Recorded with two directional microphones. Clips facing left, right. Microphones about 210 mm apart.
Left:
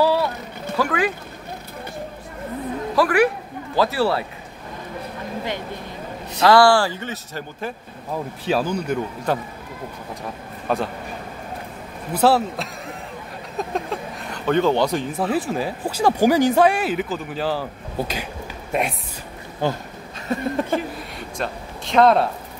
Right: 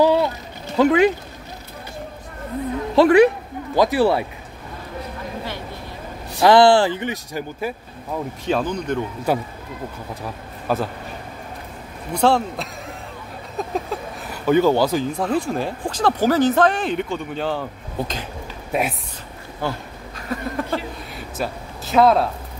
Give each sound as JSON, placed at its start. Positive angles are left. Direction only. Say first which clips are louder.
{"t": 0.0, "sound": "a sound", "louder": "right 3 dB", "side_deg": -20}
{"t": 0.7, "sound": "speech", "louder": "right 7 dB", "side_deg": -25}
{"t": 3.0, "sound": "speech", "louder": "right 6 dB", "side_deg": -25}
{"t": 6.4, "sound": "speech", "louder": "right 2 dB", "side_deg": -20}
{"t": 8.5, "sound": "speech", "louder": "even", "side_deg": 5}
{"t": 9.3, "sound": "speech", "louder": "right 2 dB", "side_deg": -10}
{"t": 10.7, "sound": "speech", "louder": "right 1 dB", "side_deg": -5}
{"t": 12.1, "sound": "speech", "louder": "even", "side_deg": 5}
{"t": 19.6, "sound": "speech", "louder": "left 3 dB", "side_deg": 20}
{"t": 20.2, "sound": "a sound", "louder": "left 3 dB", "side_deg": 25}
{"t": 21.2, "sound": "speech", "louder": "right 2 dB", "side_deg": -5}